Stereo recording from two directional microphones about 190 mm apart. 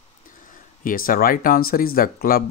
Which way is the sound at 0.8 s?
45° left (ahead or behind).